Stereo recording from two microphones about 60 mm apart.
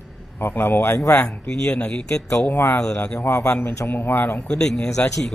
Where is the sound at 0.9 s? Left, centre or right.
Left.